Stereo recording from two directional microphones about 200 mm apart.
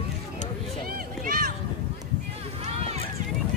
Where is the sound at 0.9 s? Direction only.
45° right (ahead or behind).